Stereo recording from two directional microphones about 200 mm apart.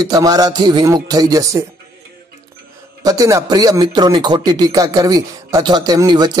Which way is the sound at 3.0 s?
15° right (ahead or behind).